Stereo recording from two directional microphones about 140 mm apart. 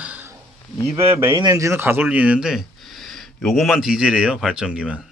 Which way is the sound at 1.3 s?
25° right (ahead or behind).